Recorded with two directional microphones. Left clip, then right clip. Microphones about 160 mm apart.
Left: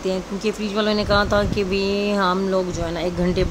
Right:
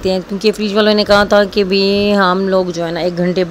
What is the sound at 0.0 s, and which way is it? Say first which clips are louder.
Speech: right 9 dB; 45° right (ahead or behind).